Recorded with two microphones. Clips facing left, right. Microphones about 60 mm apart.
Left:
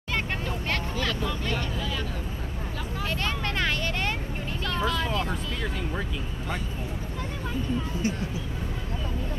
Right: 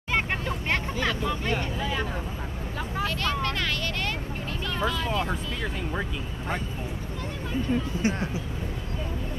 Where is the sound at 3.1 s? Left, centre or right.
Left.